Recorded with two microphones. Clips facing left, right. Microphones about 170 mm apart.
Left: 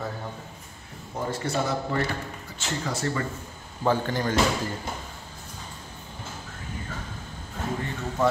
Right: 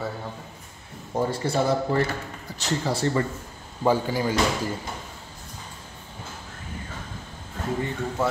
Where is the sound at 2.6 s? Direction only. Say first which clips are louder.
Right 4 dB; 35° right (ahead or behind).